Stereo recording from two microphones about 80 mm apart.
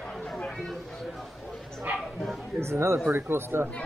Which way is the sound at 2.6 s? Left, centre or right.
Right.